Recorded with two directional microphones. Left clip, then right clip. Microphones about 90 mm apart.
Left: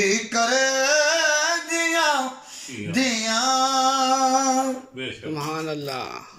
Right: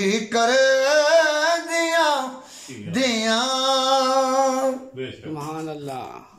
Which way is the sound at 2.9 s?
45° right (ahead or behind).